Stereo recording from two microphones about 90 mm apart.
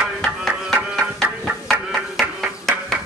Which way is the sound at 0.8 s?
5° right (ahead or behind).